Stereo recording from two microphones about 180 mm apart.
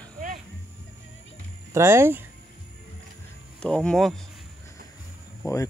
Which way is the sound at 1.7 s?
15° right (ahead or behind).